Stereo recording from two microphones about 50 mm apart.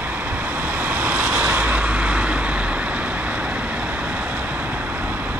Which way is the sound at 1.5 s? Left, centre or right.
Right.